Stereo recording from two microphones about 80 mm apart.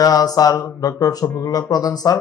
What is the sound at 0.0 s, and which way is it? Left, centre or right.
Speech, left.